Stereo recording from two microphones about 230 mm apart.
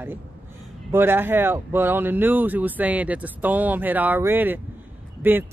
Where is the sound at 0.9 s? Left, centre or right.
Centre.